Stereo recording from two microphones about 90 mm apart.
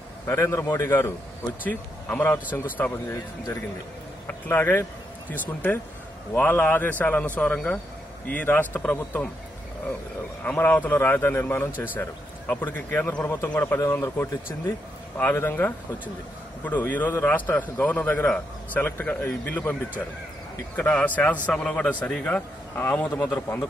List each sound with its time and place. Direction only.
0.3 s a man's voice: 30° left (ahead or behind)
4.3 s a man's voice: 20° left (ahead or behind)
10.4 s a man's voice: 20° left (ahead or behind)
13.7 s a man's voice: 35° left (ahead or behind)